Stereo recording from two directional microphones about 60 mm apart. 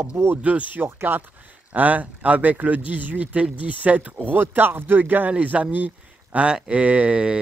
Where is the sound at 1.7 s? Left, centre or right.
Right.